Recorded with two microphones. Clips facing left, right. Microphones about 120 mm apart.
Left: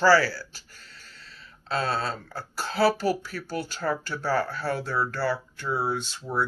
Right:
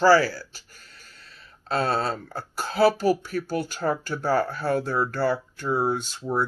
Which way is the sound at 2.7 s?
15° right (ahead or behind).